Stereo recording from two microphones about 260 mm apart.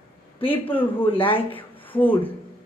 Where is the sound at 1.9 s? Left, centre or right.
Centre.